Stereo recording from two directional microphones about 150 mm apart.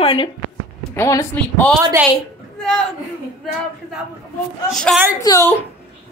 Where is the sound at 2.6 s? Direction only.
5° left (ahead or behind).